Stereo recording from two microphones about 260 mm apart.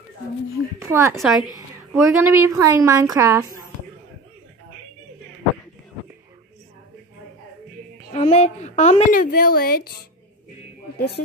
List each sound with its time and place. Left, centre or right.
0.7 s a sound: centre
1.1 s a woman's voice: centre
8.1 s a woman's voice: left